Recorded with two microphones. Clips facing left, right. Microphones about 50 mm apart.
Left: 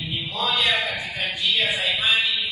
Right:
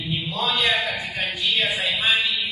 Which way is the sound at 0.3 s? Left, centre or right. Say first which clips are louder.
Even; right.